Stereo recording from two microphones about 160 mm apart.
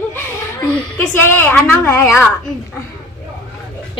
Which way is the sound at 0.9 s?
15° left (ahead or behind).